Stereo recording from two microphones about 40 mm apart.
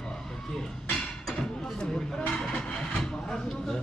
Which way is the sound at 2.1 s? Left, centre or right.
Centre.